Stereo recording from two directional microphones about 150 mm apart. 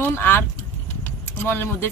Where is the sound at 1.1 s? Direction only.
15° left (ahead or behind).